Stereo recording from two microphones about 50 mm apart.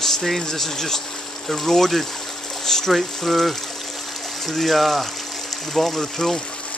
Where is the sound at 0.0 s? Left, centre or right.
Centre.